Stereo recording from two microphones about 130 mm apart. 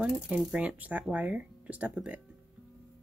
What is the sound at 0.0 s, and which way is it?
A woman's voice, 5° right (ahead or behind).